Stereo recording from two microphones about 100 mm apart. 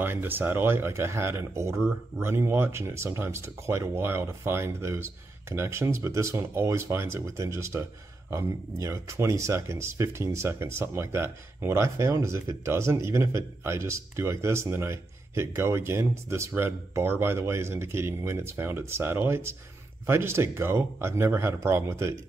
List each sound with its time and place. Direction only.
0.0 s speech: 20° right (ahead or behind)